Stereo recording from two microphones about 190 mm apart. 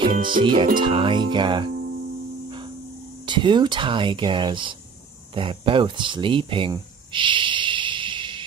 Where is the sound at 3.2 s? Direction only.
25° right (ahead or behind).